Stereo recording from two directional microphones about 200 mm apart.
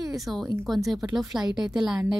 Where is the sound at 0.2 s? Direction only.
Centre (ahead or behind).